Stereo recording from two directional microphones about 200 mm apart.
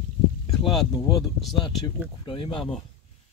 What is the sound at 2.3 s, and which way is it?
Speech, 25° left (ahead or behind).